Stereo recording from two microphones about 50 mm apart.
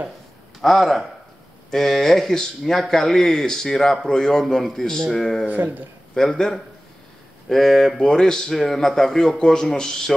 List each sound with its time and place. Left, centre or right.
0.6 s a man's voice: centre
5.5 s speech: right
6.1 s a man's voice: centre